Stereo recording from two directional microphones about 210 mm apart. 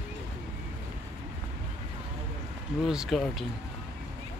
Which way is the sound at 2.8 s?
Centre (ahead or behind).